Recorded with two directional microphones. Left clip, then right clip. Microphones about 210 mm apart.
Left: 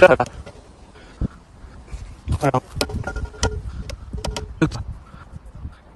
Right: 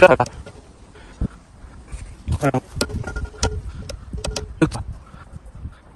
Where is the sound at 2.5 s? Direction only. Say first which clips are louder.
Left 1 dB; 20° left (ahead or behind).